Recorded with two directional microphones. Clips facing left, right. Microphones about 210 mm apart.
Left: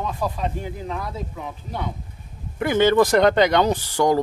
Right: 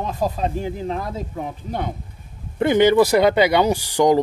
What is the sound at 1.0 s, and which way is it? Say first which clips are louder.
Speech: right 3 dB; 45° right (ahead or behind).